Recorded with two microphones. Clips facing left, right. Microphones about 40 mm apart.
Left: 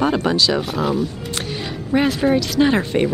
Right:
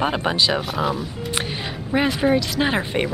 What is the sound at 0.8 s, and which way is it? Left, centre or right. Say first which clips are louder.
Speech: left 3 dB; centre.